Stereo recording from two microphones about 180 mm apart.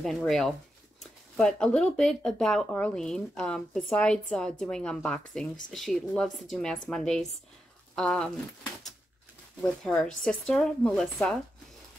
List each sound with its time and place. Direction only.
0.0 s speech: centre (ahead or behind)
9.6 s speech: 5° left (ahead or behind)